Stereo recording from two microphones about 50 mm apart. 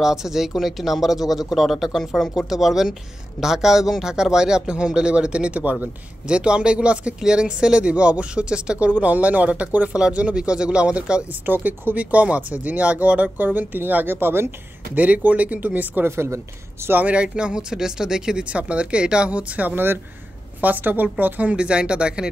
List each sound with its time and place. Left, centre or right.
0.0 s speech: centre
11.4 s speech: right
14.1 s speech: right
15.0 s speech: right
16.1 s a woman's voice: right
17.0 s speech: right
18.4 s speech: right
19.7 s speech: right
21.5 s speech: right